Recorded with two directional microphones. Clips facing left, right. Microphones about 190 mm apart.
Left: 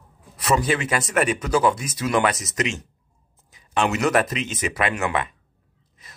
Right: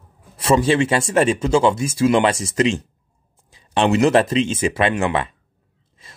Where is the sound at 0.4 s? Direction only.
30° right (ahead or behind).